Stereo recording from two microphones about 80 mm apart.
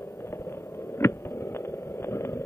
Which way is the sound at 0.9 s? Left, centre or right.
Left.